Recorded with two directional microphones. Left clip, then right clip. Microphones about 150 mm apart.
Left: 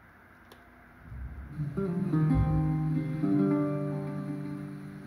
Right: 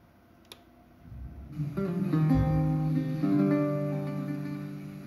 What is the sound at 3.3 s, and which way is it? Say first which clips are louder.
Music: right 1 dB; 20° right (ahead or behind).